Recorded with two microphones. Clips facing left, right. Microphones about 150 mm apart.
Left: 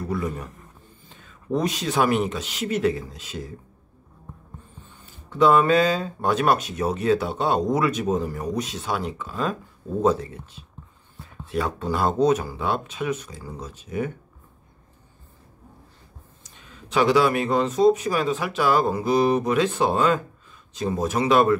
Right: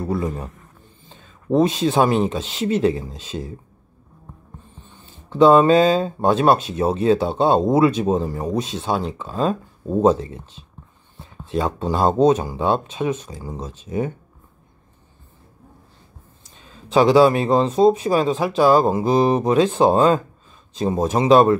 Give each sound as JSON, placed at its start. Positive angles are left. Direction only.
{"t": 0.0, "sound": "a man's voice", "side_deg": -25}
{"t": 5.0, "sound": "speech", "side_deg": -30}
{"t": 16.4, "sound": "speech", "side_deg": -30}